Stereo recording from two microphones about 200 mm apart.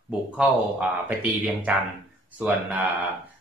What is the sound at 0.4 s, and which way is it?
Speech, 5° right (ahead or behind).